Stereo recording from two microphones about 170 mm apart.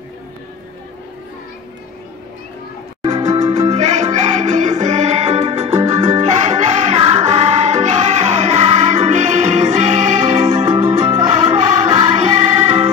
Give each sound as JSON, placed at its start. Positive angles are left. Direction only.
{"t": 3.0, "sound": "music", "side_deg": -40}